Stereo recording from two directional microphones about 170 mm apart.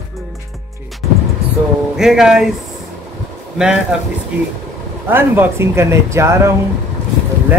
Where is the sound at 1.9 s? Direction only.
5° right (ahead or behind).